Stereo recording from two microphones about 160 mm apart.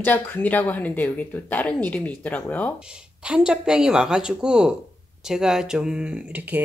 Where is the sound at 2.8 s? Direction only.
5° right (ahead or behind).